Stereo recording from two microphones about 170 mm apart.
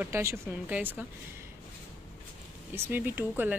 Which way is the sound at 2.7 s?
10° right (ahead or behind).